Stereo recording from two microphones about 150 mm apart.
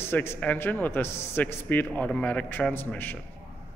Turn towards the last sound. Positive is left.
turn(degrees=15)  # may be behind; listen again after turning